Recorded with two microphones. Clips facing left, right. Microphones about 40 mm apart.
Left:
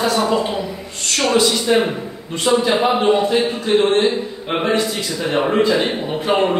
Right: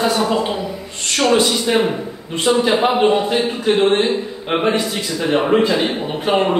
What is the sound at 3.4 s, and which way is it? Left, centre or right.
Speech, right.